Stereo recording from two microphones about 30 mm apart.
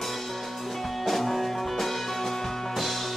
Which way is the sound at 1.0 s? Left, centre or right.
Centre.